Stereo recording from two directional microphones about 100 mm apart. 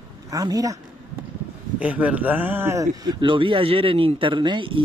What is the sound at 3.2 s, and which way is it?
Speech, 55° right (ahead or behind).